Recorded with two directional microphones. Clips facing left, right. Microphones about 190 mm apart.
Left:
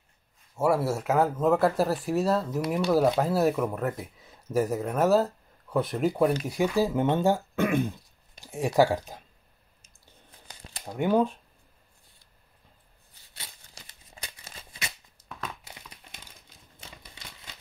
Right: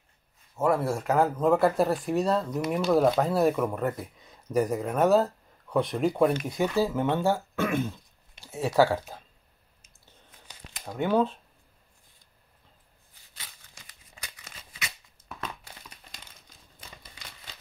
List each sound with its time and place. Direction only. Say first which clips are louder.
0.6 s speech: left 1 dB; 10° left (ahead or behind)
10.9 s speech: left 1 dB; 15° left (ahead or behind)
13.4 s a sound: left 2 dB; 30° left (ahead or behind)
15.4 s crumpling: even; 10° left (ahead or behind)